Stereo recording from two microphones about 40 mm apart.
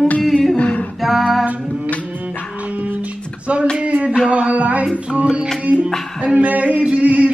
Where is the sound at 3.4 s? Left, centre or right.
Right.